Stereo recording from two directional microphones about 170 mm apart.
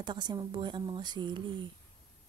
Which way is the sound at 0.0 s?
25° right (ahead or behind).